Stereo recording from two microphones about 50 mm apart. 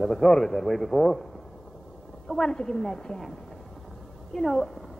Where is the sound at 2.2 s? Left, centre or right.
Centre.